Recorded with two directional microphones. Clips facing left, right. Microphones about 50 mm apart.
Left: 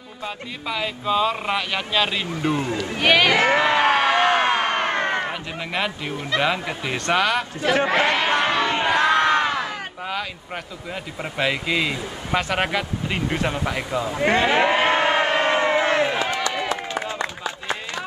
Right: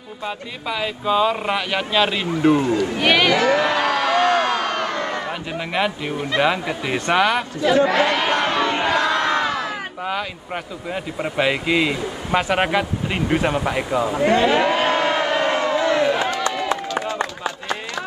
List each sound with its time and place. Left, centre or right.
0.7 s speech: centre
3.3 s crowd: left
5.7 s speech: centre
7.6 s speech: left
8.5 s music: right
8.8 s music: left
10.0 s speech: centre
14.2 s a sound: left